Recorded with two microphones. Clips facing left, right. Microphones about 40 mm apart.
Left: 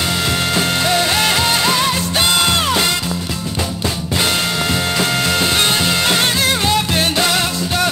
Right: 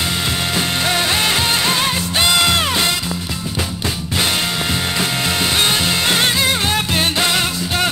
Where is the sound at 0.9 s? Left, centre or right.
Centre.